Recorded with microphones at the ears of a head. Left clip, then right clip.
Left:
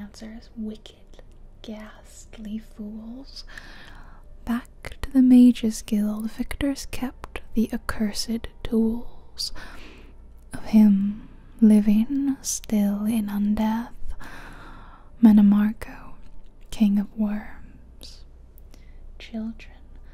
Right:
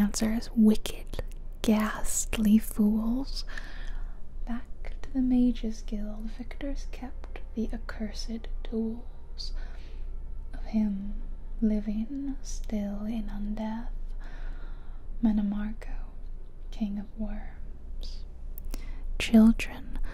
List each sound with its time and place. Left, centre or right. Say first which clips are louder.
0.0 s speech: right 12 dB; right
4.5 s a woman's voice: left 10 dB; left
18.7 s whispering: right 9 dB; right